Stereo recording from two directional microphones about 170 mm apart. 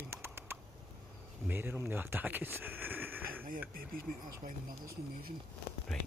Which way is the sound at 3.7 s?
60° right (ahead or behind).